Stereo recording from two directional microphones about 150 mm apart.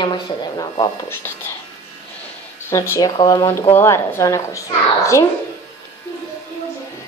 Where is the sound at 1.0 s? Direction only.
15° left (ahead or behind).